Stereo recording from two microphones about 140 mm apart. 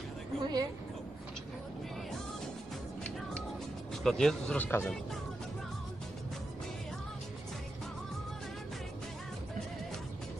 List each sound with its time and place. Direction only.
0.4 s speech: 30° right (ahead or behind)
3.9 s speech: 5° left (ahead or behind)